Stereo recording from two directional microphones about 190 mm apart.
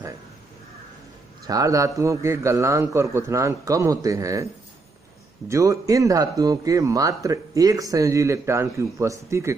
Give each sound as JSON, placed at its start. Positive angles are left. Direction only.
{"t": 1.5, "sound": "speech", "side_deg": -20}
{"t": 5.5, "sound": "speech", "side_deg": -15}